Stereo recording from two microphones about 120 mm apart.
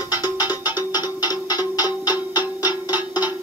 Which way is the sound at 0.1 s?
15° right (ahead or behind).